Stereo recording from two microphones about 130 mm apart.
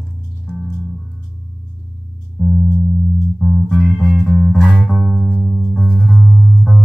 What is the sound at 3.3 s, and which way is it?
Music, 5° left (ahead or behind).